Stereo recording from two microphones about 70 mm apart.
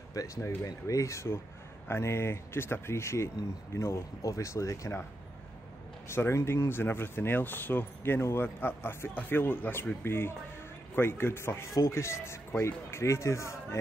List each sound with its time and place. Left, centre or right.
0.1 s speech: left
6.0 s speech: left